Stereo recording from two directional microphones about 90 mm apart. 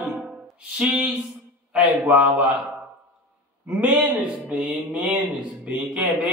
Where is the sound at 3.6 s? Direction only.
10° right (ahead or behind).